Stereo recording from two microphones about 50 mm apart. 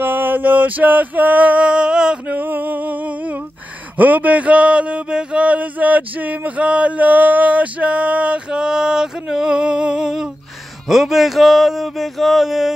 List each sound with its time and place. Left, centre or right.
0.0 s male singing: right; by 2.3 s centre
2.3 s a sound: right; by 10.3 s centre
10.9 s speech: centre